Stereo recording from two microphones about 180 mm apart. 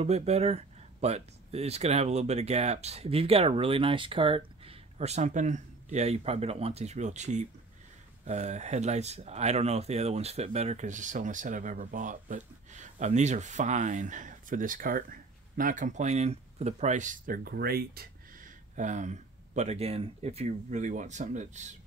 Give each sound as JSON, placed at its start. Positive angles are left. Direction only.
{"t": 0.0, "sound": "speech", "side_deg": -35}